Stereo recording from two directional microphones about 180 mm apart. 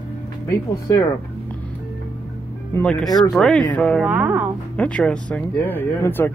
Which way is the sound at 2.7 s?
5° left (ahead or behind).